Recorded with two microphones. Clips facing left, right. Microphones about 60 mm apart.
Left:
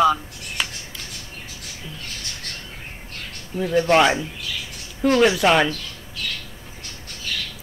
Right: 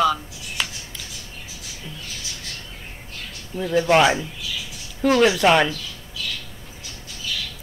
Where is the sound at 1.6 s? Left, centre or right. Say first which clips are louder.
Even; left.